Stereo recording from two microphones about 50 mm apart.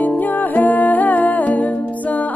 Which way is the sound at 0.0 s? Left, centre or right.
Left.